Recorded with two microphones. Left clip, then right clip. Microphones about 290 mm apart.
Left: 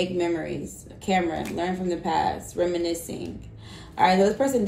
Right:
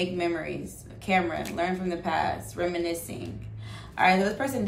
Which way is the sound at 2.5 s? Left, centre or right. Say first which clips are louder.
Left 4 dB; centre.